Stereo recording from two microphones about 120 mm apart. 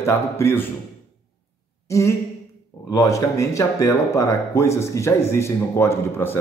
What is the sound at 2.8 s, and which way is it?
Speech, 30° left (ahead or behind).